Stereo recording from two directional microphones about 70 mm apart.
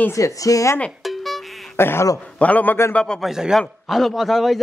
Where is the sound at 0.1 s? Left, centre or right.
Left.